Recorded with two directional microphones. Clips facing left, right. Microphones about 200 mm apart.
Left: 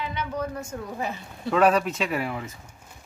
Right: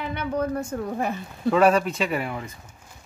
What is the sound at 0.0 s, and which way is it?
Speech, 55° right (ahead or behind).